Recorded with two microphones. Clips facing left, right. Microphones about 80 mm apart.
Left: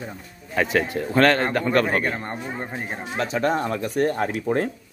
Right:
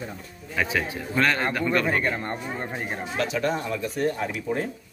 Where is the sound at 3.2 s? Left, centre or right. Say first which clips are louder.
Left 4 dB; left.